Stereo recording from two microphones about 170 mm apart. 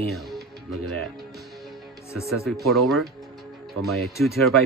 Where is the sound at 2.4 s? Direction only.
Centre (ahead or behind).